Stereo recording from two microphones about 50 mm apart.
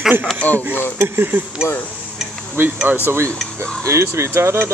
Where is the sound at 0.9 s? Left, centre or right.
Right.